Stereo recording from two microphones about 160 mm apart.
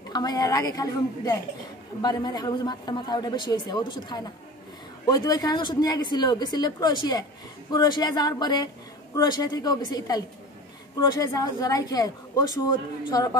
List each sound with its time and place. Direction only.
0.1 s a man's voice: 25° left (ahead or behind)